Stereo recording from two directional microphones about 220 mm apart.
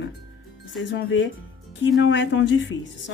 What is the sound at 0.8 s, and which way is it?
A woman's voice, 55° left (ahead or behind).